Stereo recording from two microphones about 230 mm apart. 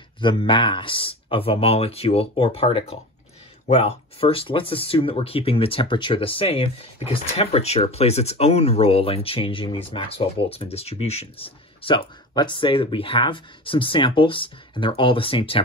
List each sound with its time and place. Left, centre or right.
0.2 s speech: left